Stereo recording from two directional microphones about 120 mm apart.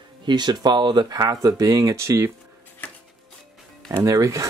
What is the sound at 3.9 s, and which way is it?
Speech, 25° right (ahead or behind).